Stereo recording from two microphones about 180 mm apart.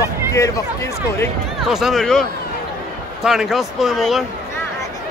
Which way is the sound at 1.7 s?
Centre (ahead or behind).